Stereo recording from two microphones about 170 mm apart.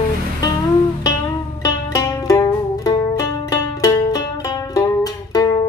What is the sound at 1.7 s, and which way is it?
Music, 20° left (ahead or behind).